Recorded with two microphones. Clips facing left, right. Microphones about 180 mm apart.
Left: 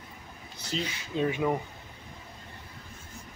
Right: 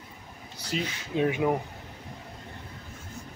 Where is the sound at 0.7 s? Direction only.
10° right (ahead or behind).